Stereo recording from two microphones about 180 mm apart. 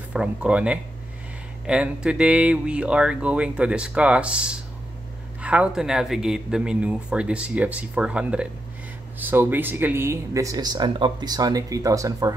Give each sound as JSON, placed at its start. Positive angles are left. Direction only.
{"t": 0.1, "sound": "speech", "side_deg": -5}